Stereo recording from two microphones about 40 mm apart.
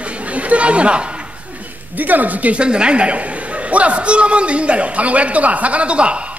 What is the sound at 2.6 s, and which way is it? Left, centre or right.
A man's voice, right.